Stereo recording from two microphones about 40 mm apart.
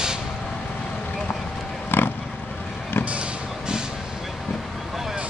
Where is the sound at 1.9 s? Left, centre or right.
Left.